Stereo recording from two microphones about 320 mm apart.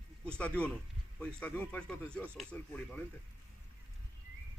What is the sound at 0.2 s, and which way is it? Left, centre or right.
Speech, centre.